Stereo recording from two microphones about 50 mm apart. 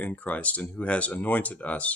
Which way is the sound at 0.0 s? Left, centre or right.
Left.